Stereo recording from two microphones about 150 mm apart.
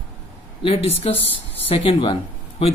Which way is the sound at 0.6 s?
40° left (ahead or behind).